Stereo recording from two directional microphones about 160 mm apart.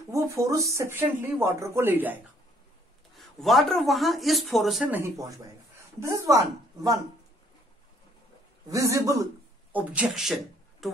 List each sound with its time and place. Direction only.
0.1 s speech: 20° right (ahead or behind)
3.2 s a man's voice: centre (ahead or behind)
5.9 s a woman's voice: 20° right (ahead or behind)
8.6 s a man's voice: 20° right (ahead or behind); by 10.9 s centre (ahead or behind)